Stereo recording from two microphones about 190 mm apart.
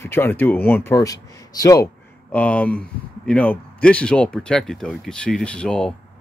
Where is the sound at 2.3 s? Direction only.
5° left (ahead or behind).